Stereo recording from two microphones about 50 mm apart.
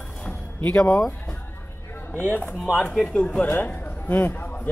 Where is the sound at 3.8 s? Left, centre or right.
Left.